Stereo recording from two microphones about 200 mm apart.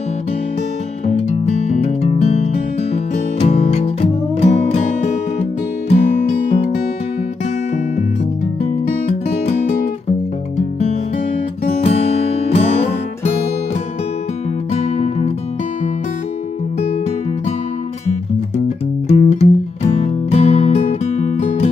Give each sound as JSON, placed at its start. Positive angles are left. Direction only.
{"t": 1.0, "sound": "music", "side_deg": 35}
{"t": 11.6, "sound": "music", "side_deg": 35}
{"t": 14.7, "sound": "music", "side_deg": 30}
{"t": 19.0, "sound": "music", "side_deg": 30}